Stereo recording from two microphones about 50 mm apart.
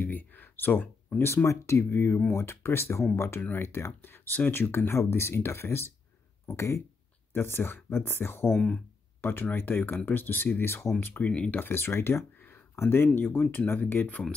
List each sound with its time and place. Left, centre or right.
0.0 s a sound: left
1.2 s speech: left
1.9 s speech: left
3.3 s speech: left
3.6 s speech: left
6.4 s speech: left
7.3 s speech: left
9.9 s speech: left
11.0 s speech: left
11.2 s speech: left
11.6 s speech: left
12.4 s a sound: left
12.7 s speech: left